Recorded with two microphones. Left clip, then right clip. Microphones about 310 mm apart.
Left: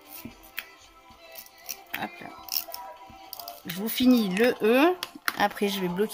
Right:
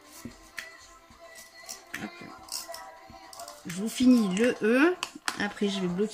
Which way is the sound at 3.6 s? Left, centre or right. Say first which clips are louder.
Left 1 dB; centre.